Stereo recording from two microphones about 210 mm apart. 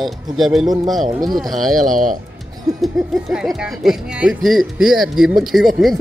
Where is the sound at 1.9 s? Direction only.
40° right (ahead or behind).